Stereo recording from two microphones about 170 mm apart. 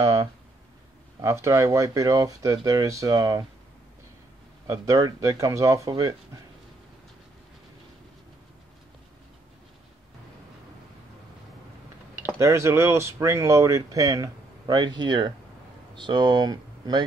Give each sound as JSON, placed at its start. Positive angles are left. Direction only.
{"t": 0.0, "sound": "speech", "side_deg": -20}
{"t": 4.6, "sound": "speech", "side_deg": -20}
{"t": 12.2, "sound": "speech", "side_deg": -15}